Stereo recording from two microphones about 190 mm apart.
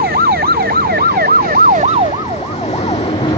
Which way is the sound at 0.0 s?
55° right (ahead or behind).